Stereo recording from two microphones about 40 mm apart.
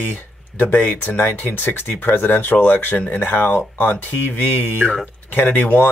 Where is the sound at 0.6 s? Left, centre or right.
Left.